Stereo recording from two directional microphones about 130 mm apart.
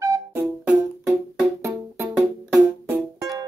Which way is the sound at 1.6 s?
20° right (ahead or behind).